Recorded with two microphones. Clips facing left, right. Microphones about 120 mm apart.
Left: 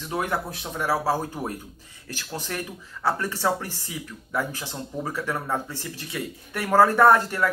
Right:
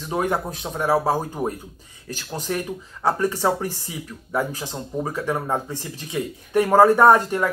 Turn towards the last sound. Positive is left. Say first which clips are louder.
# right 2 dB
turn(degrees=-15)  # may be behind; listen again after turning